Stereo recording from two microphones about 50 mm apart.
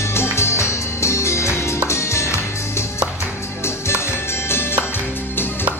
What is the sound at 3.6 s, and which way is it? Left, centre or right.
Music, left.